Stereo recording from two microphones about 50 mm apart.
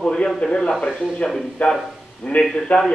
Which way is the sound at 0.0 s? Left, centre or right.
Centre.